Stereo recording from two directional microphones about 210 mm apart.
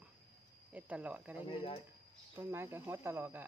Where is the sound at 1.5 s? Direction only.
25° left (ahead or behind).